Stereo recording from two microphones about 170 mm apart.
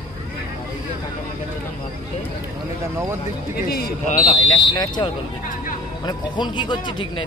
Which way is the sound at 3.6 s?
65° left (ahead or behind).